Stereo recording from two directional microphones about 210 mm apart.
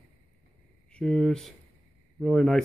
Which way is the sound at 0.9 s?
5° left (ahead or behind).